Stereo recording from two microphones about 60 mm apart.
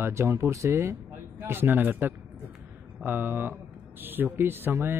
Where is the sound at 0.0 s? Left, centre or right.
Right.